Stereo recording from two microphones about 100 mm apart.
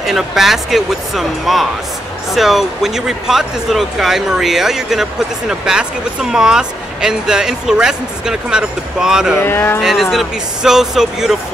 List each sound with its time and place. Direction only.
0.0 s speech: 5° right (ahead or behind)
9.4 s speech: 25° left (ahead or behind)
9.8 s speech: 5° right (ahead or behind)